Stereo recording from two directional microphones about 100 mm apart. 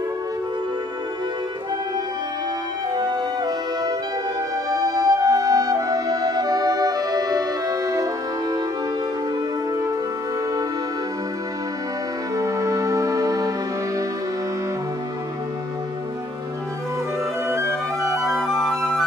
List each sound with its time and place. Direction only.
2.9 s music: 45° right (ahead or behind)
12.4 s music: 30° right (ahead or behind)
17.5 s music: 25° right (ahead or behind)
18.3 s music: 5° left (ahead or behind)